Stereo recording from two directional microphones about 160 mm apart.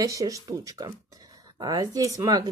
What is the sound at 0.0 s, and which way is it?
Speech, 20° right (ahead or behind).